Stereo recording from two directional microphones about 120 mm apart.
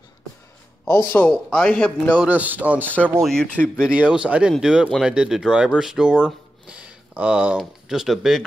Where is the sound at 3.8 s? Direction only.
10° right (ahead or behind).